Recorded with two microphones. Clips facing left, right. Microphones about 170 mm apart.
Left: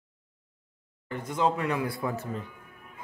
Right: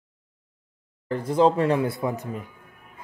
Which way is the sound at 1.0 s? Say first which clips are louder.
Right 8 dB; 35° right (ahead or behind).